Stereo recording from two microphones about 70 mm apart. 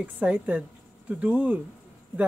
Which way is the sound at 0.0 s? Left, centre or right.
Right.